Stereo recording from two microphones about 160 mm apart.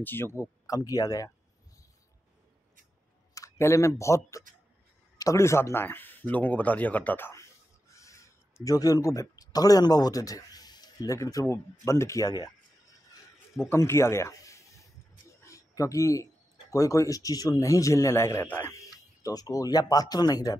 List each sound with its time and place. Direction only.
0.0 s a man's voice: 15° left (ahead or behind)
3.3 s a man's voice: 20° left (ahead or behind)
13.6 s a man's voice: 15° left (ahead or behind)
15.4 s a sound: 20° left (ahead or behind)
16.7 s a man's voice: 20° left (ahead or behind)